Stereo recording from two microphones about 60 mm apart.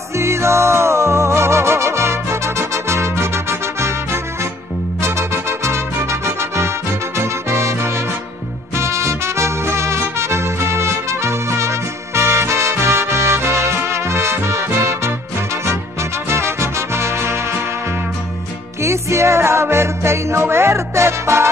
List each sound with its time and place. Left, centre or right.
0.1 s music: right
18.8 s music: right